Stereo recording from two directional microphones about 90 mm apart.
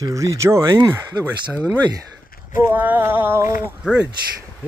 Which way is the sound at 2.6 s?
20° right (ahead or behind).